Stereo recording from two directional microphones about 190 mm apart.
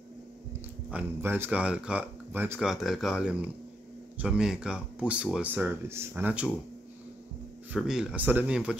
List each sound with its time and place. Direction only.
0.8 s speech: 10° right (ahead or behind)
7.7 s speech: 5° right (ahead or behind)